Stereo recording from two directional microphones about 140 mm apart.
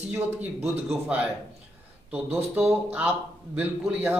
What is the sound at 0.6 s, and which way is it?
Speech, 50° right (ahead or behind).